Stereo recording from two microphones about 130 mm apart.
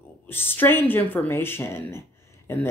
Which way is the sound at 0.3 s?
15° left (ahead or behind).